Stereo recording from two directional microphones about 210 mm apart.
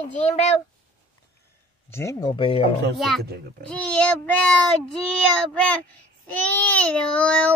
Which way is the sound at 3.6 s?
5° left (ahead or behind).